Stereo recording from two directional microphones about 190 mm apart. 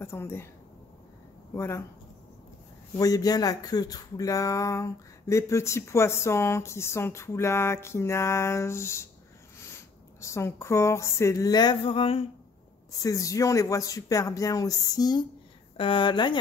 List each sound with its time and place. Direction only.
0.0 s speech: 10° left (ahead or behind)
1.5 s speech: 15° left (ahead or behind)
3.0 s speech: 20° left (ahead or behind)
10.2 s speech: 15° left (ahead or behind)
13.0 s speech: 15° left (ahead or behind)